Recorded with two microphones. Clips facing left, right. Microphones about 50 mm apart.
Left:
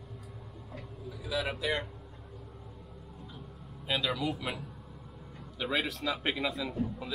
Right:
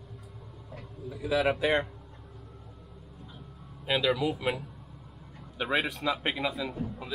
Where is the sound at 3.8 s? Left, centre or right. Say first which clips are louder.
Right 5 dB; centre.